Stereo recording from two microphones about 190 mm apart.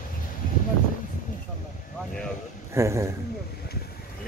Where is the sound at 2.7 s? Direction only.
15° right (ahead or behind).